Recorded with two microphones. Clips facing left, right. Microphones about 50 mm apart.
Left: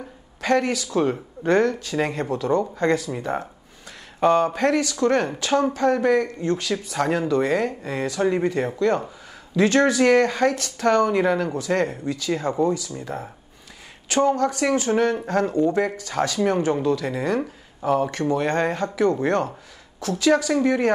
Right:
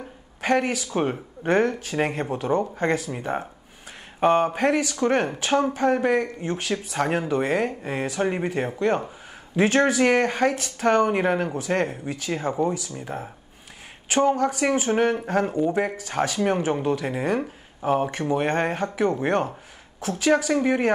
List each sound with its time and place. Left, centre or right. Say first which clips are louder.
0.4 s a woman's voice: left 1 dB; right